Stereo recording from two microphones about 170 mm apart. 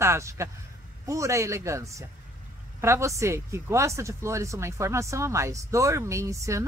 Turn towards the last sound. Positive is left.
turn(degrees=-20)  # may be behind; listen again after turning